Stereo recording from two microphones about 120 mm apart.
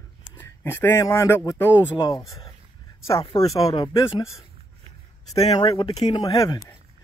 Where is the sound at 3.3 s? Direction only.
30° left (ahead or behind).